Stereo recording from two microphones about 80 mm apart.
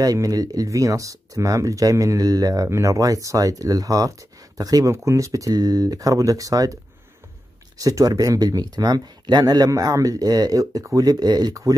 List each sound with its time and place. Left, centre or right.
0.0 s speech: right
4.9 s speech: right